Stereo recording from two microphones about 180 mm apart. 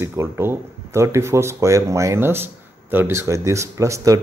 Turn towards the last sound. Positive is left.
turn(degrees=-15)  # may be behind; listen again after turning